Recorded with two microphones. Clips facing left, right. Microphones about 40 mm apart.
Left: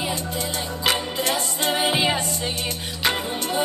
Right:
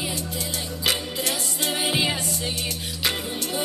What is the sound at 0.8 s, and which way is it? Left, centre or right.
Music, left.